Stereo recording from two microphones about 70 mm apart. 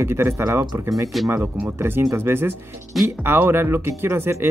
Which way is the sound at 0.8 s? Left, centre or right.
Right.